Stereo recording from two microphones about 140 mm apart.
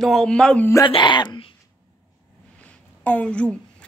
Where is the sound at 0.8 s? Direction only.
35° left (ahead or behind).